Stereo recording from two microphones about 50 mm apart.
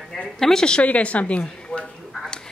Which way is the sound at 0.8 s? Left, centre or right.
Left.